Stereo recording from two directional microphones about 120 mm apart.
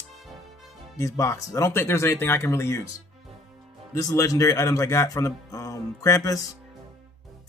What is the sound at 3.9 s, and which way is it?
Speech, 30° left (ahead or behind).